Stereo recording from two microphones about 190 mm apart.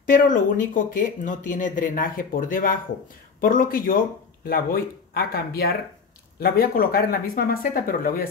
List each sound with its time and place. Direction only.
0.0 s speech: 45° left (ahead or behind)